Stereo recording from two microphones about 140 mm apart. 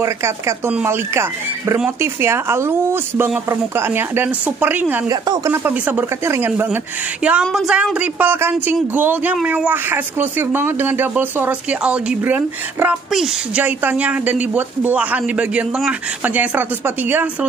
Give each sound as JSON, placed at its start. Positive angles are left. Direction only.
{"t": 0.0, "sound": "a woman's voice", "side_deg": -20}
{"t": 5.1, "sound": "speech", "side_deg": -30}
{"t": 5.5, "sound": "a woman's voice", "side_deg": -10}